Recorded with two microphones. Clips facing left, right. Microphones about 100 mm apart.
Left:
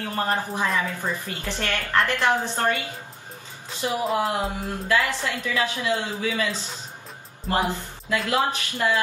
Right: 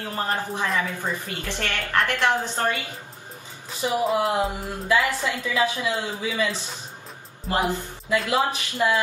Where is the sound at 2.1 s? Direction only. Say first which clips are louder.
Even; 15° left (ahead or behind).